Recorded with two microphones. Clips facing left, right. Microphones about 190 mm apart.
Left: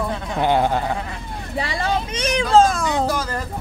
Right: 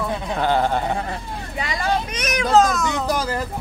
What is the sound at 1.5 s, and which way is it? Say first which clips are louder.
Speech: left 1 dB; 30° left (ahead or behind).